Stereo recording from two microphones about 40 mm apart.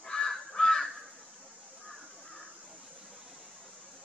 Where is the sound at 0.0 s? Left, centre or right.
Centre.